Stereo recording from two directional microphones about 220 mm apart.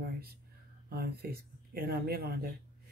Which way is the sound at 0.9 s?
45° right (ahead or behind).